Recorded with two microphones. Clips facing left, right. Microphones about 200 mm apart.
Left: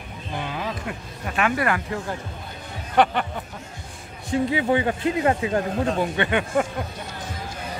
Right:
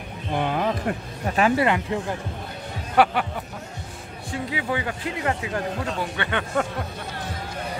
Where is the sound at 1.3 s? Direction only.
30° right (ahead or behind).